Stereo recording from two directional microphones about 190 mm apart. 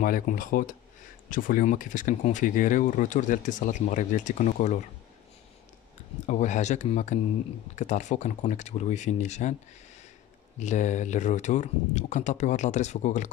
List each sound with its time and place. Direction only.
0.0 s speech: 45° left (ahead or behind)
6.2 s speech: 40° left (ahead or behind)
10.6 s speech: 40° left (ahead or behind)